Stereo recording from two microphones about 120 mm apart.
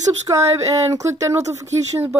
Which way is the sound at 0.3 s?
30° right (ahead or behind).